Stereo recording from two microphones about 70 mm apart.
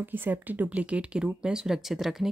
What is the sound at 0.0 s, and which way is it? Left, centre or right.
Speech, right.